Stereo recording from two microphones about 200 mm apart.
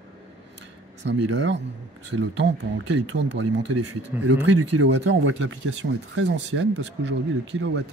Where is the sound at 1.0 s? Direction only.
65° right (ahead or behind).